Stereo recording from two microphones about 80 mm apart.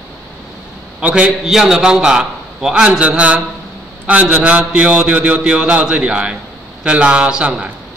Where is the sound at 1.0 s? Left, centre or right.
Centre.